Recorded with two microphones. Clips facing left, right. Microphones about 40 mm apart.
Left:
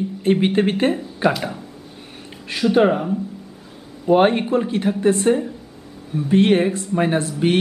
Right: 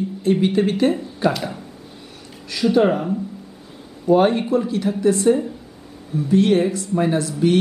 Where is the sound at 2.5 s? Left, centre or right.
Left.